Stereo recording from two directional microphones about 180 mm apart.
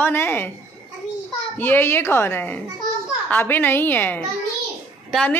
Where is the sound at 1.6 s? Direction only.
10° left (ahead or behind).